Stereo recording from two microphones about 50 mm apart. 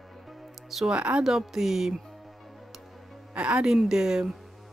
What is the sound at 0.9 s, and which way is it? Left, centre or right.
Speech, right.